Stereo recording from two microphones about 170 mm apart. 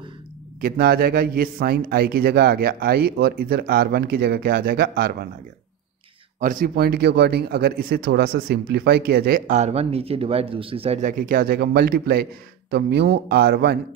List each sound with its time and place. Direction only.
0.6 s a man's voice: 60° right (ahead or behind)
6.4 s speech: 55° right (ahead or behind)
9.5 s speech: 40° right (ahead or behind); by 12.3 s 60° right (ahead or behind)
12.7 s speech: 85° right